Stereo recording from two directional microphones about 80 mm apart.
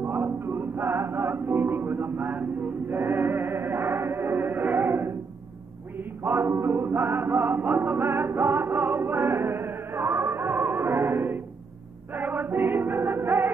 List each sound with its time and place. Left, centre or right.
0.0 s music: right
5.9 s chant: right
12.1 s choir: right